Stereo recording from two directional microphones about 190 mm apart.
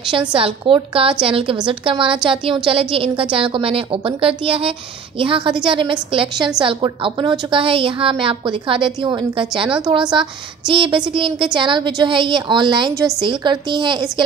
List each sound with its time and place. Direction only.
0.3 s a woman's voice: 25° right (ahead or behind)